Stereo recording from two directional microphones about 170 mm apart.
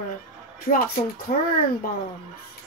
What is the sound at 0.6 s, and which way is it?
Speech, 55° left (ahead or behind).